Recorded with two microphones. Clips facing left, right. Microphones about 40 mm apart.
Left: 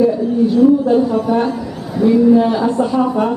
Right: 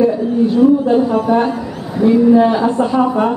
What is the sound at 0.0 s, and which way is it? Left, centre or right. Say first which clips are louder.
A woman's voice: even; centre.